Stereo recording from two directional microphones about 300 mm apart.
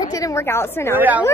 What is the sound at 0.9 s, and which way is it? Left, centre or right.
Speech, centre.